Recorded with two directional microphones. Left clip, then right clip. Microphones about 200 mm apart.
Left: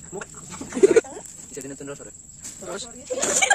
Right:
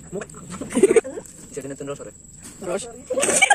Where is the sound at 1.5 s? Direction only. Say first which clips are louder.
Right 5 dB; 10° left (ahead or behind).